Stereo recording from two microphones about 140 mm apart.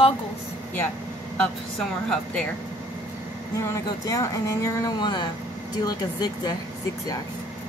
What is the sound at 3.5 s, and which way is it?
Speech, 20° left (ahead or behind).